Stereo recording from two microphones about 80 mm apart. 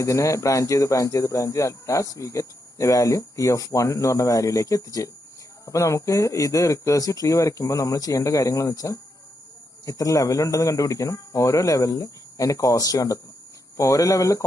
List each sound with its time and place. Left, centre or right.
0.0 s speech: left